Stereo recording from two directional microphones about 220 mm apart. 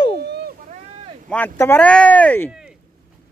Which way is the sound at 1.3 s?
10° left (ahead or behind).